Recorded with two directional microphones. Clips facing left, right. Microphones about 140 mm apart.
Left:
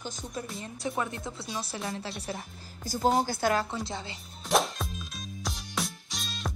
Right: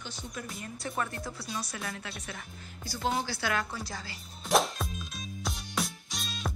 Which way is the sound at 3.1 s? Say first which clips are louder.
Left 6 dB; 45° left (ahead or behind).